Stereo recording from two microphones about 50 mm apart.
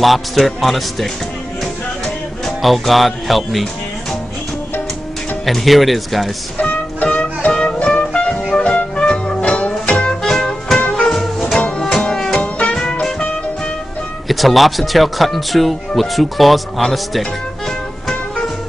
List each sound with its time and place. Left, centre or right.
0.0 s speech: centre
2.6 s speech: centre
5.4 s speech: centre
6.6 s music: left
10.2 s music: centre
12.4 s music: left
14.2 s speech: centre